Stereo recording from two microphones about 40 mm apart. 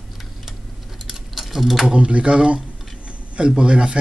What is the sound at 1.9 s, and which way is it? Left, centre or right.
Speech, right.